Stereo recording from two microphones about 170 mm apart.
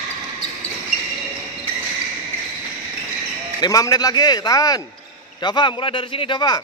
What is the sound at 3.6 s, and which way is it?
Speech, 20° left (ahead or behind).